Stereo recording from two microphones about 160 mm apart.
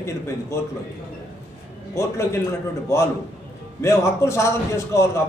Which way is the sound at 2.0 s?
15° left (ahead or behind).